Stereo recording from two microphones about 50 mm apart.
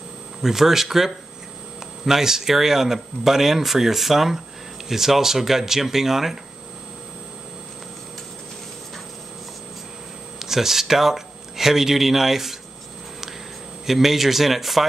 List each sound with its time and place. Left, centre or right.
0.4 s speech: centre
10.4 s speech: centre
13.8 s speech: centre